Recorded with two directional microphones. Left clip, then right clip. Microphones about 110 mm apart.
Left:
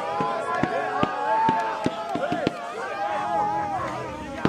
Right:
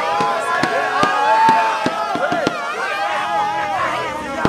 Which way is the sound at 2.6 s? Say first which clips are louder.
Right 8 dB; 35° right (ahead or behind).